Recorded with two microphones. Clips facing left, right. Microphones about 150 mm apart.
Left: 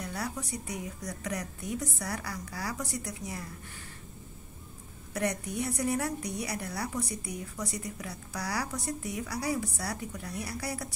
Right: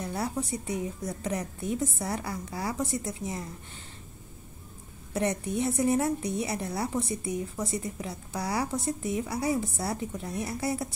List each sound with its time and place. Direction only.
0.0 s a woman's voice: 25° right (ahead or behind)
5.1 s a woman's voice: 25° right (ahead or behind)